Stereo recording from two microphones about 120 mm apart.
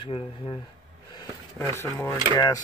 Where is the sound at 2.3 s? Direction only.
35° left (ahead or behind).